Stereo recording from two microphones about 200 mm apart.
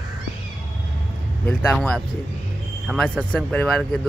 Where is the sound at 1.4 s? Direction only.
5° left (ahead or behind).